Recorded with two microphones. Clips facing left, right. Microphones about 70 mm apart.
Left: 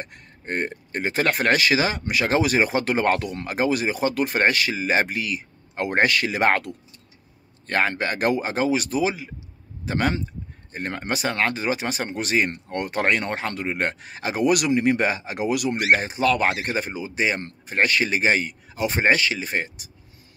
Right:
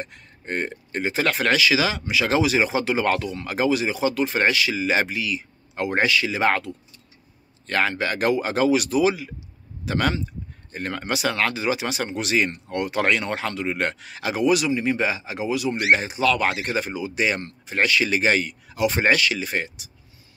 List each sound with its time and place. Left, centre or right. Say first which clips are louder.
0.0 s speech: right 1 dB; left
7.6 s a man's voice: even; left
14.4 s speech: left 1 dB; left
16.0 s speech: even; left
17.6 s speech: even; left